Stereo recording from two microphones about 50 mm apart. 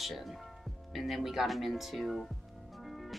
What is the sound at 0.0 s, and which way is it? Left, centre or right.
Speech, centre.